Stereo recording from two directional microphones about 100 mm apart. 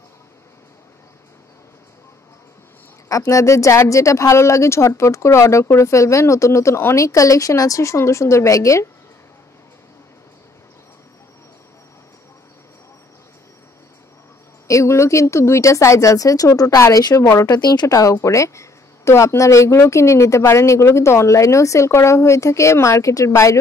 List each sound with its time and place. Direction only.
3.1 s speech: 30° left (ahead or behind)
14.7 s speech: 30° left (ahead or behind)